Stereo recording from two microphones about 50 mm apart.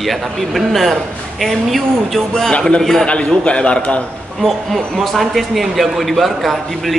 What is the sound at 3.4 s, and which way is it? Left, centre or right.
Speech, left.